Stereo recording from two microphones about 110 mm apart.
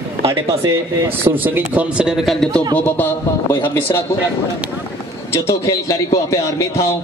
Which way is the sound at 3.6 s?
20° left (ahead or behind).